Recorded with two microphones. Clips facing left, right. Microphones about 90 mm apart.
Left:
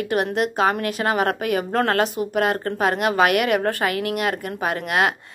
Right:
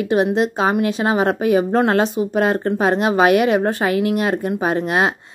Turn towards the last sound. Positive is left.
turn(degrees=-25)  # may be behind; listen again after turning